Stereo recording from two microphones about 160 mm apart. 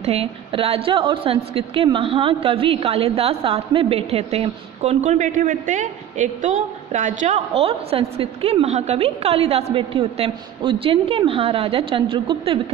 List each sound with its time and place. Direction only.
0.0 s a woman's voice: 40° right (ahead or behind)
7.3 s a woman's voice: 35° right (ahead or behind)